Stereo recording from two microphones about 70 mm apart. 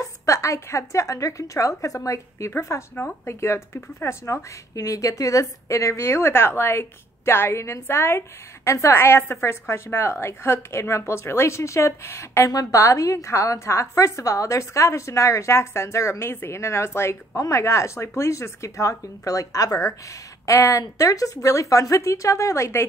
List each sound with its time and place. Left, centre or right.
0.0 s a woman's voice: left
2.5 s speech: left
7.8 s speech: left
8.6 s speech: left
12.4 s a woman's voice: left